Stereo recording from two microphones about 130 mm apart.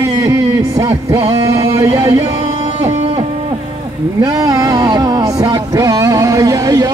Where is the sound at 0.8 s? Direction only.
45° right (ahead or behind).